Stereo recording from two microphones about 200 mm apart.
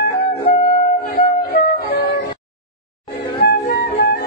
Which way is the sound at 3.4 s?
55° left (ahead or behind).